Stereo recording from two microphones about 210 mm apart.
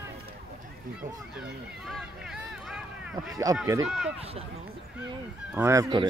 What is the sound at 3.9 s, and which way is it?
Run, centre (ahead or behind).